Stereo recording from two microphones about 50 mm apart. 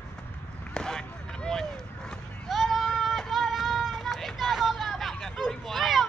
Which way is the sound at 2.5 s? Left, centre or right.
Centre.